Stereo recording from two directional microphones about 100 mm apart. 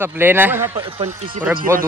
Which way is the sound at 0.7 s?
60° right (ahead or behind).